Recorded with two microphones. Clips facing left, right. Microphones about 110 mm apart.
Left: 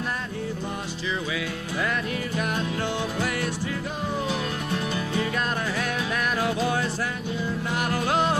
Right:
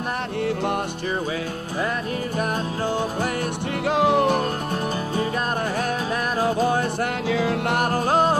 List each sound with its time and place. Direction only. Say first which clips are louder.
3.8 s music: right 15 dB; 85° right; by 4.5 s 60° right (ahead or behind)
6.4 s music: right 7 dB; 40° right (ahead or behind)
7.2 s music: right 7 dB; 90° right
7.7 s music: right 3 dB; 45° right (ahead or behind)